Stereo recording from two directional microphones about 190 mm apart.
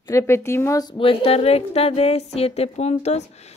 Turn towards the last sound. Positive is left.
turn(degrees=35)  # may be behind; listen again after turning